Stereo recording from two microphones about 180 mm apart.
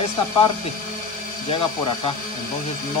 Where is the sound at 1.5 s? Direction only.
30° left (ahead or behind).